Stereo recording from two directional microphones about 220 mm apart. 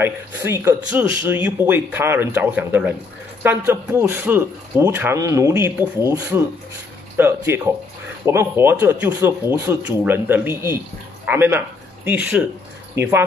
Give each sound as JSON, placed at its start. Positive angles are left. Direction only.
{"t": 0.0, "sound": "a man's voice", "side_deg": -10}